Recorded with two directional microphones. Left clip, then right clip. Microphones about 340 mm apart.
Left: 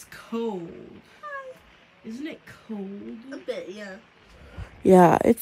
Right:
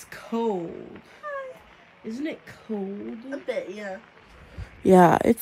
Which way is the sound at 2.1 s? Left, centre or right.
Centre.